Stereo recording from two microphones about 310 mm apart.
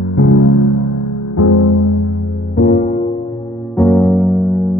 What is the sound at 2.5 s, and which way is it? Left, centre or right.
Music, left.